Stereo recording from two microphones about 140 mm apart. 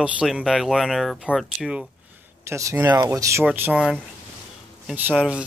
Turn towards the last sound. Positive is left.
turn(degrees=-10)  # may be behind; listen again after turning